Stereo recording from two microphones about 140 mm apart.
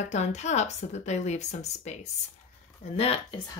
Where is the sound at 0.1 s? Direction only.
55° left (ahead or behind).